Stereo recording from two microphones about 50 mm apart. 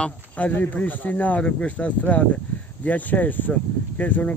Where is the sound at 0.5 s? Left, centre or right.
Left.